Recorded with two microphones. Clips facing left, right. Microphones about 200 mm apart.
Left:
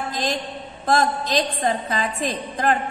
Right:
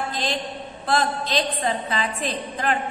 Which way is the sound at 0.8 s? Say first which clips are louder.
Left 3 dB; 45° left (ahead or behind).